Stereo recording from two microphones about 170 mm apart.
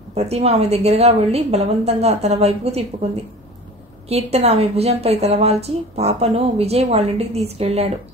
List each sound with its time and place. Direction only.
0.1 s a woman's voice: 40° right (ahead or behind)
4.1 s a woman's voice: 40° right (ahead or behind)